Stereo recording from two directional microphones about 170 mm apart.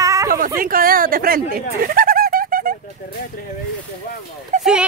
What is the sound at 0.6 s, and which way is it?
Speech, 55° right (ahead or behind).